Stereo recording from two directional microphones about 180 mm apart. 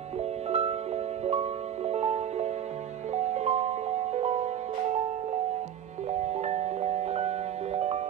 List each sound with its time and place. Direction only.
0.5 s music: 35° right (ahead or behind)
6.1 s music: 40° right (ahead or behind)